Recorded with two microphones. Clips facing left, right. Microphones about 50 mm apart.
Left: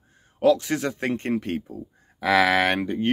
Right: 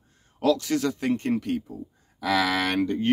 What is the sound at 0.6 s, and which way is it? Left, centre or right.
Speech, left.